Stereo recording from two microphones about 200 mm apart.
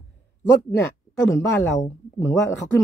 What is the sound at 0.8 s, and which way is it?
Speech, 15° left (ahead or behind).